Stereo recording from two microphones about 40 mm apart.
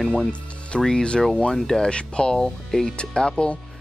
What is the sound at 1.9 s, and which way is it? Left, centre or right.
Speech, left.